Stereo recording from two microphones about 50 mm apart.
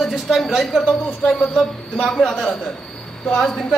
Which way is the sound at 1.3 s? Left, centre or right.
Centre.